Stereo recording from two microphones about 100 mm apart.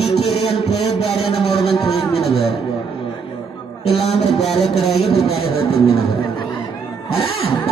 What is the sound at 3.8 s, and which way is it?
Speech, 85° left.